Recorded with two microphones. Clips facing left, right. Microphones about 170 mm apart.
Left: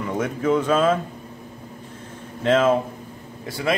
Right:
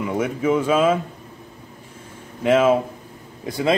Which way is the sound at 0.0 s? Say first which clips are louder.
Right 2 dB; 10° right (ahead or behind).